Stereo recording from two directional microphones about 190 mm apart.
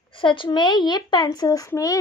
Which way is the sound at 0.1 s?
25° left (ahead or behind).